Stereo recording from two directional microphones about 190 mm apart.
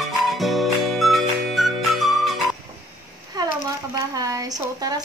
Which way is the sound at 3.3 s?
20° right (ahead or behind).